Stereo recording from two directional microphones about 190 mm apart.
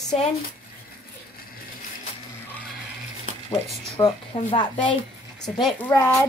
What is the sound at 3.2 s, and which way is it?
Speech, 25° left (ahead or behind).